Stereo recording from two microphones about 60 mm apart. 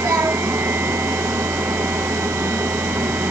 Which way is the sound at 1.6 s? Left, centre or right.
Right.